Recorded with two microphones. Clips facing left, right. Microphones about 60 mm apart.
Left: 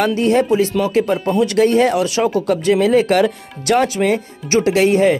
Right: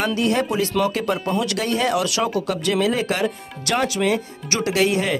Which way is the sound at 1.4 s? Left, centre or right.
Left.